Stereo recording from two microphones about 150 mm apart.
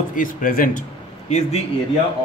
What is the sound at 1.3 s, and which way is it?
Speech, 45° left (ahead or behind).